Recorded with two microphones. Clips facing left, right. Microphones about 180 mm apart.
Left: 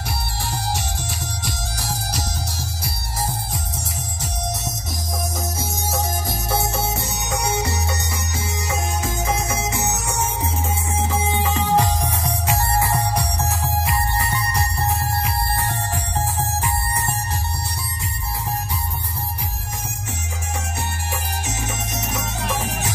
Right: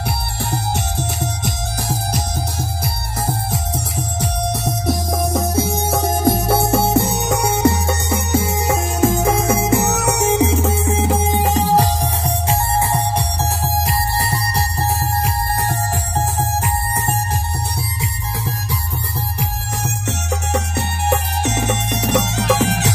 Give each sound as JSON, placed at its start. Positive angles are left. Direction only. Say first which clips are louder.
{"t": 0.5, "sound": "music", "louder": "right 4 dB", "side_deg": -55}
{"t": 20.5, "sound": "music", "louder": "right 4 dB", "side_deg": -65}